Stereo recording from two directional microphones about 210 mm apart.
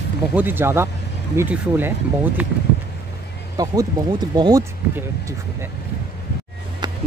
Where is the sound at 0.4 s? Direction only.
10° right (ahead or behind).